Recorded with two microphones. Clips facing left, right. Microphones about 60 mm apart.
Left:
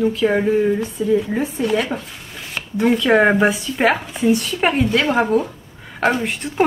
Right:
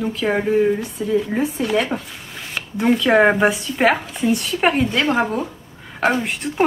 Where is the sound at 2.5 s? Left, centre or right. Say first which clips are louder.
Left 1 dB; centre.